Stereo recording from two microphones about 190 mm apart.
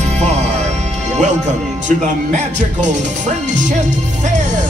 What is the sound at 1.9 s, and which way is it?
Speech, 40° right (ahead or behind).